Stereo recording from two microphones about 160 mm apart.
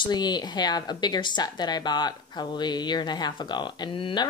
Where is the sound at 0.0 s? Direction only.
25° left (ahead or behind).